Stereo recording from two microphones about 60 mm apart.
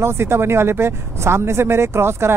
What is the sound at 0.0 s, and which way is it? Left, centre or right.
Speech, right.